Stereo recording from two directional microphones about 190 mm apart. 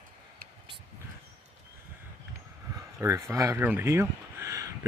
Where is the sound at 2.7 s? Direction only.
15° right (ahead or behind).